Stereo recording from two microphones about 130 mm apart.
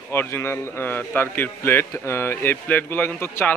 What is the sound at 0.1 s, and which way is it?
A man's voice, 20° left (ahead or behind).